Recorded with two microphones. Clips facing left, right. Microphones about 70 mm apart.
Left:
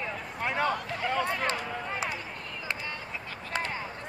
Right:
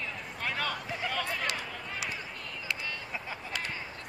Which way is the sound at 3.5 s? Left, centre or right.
Left.